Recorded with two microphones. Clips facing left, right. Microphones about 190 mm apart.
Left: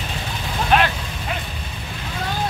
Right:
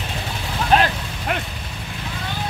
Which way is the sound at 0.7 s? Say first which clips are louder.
Right 1 dB; 35° right (ahead or behind).